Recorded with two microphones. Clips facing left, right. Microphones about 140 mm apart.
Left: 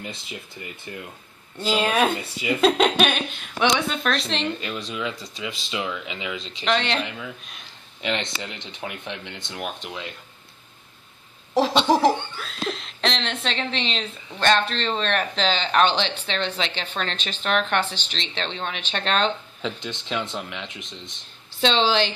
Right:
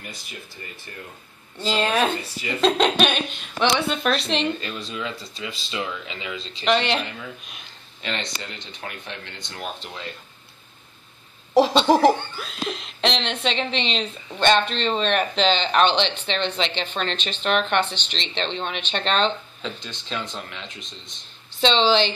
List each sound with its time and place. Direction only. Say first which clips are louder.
0.0 s speech: left 3 dB; 25° left (ahead or behind)
1.6 s speech: left 1 dB; 5° left (ahead or behind)
4.8 s speech: left 1 dB; 20° left (ahead or behind)
6.6 s speech: right 2 dB; 5° right (ahead or behind)
8.0 s speech: left 3 dB; 15° left (ahead or behind)
11.9 s speech: right 2 dB; centre (ahead or behind)
19.6 s speech: left 3 dB; 20° left (ahead or behind)
21.5 s speech: right 2 dB; 5° left (ahead or behind)